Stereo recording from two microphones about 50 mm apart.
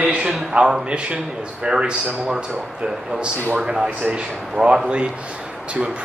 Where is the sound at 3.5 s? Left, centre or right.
Centre.